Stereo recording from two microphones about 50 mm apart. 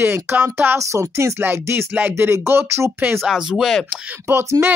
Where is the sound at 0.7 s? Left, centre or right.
Right.